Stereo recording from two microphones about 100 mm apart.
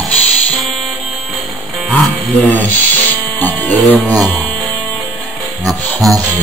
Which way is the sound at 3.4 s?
20° left (ahead or behind).